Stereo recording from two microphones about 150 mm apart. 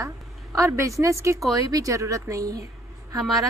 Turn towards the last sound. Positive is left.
turn(degrees=0)  # may be behind; listen again after turning